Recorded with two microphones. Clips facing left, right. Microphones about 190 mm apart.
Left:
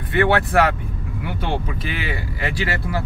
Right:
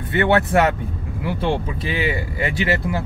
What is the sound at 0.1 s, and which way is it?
Speech, 25° right (ahead or behind).